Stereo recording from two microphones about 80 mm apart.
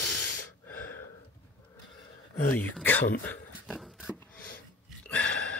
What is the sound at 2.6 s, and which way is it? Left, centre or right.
Speech, left.